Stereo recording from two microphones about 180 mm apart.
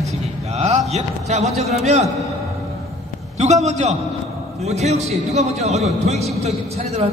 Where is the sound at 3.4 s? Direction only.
40° right (ahead or behind).